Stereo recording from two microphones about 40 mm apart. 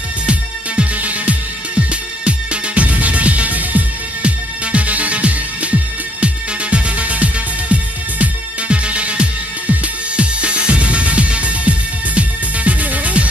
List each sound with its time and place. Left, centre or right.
0.3 s music: right